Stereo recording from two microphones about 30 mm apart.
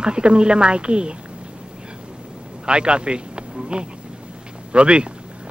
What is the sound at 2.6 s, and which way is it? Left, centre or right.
Speech, right.